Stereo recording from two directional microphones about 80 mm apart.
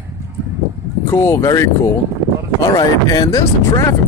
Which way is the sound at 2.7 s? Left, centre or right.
Left.